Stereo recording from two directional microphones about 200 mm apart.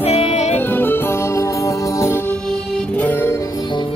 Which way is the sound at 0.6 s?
10° left (ahead or behind).